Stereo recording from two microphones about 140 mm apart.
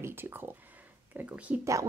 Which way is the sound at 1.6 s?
25° right (ahead or behind).